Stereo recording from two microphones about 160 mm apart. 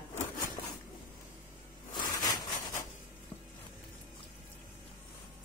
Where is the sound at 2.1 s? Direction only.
25° left (ahead or behind).